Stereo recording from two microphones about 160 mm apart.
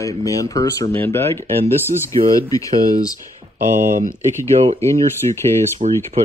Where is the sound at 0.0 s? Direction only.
20° left (ahead or behind).